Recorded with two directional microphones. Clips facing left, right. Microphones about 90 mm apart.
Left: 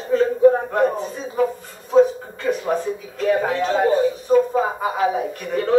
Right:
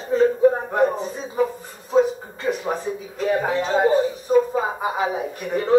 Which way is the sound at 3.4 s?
10° right (ahead or behind).